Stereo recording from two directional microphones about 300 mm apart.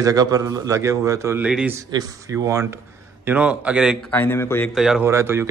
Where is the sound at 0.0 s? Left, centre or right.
Centre.